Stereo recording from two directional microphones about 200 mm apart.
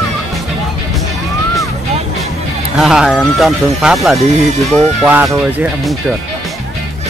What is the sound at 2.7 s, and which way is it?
Speech, centre (ahead or behind).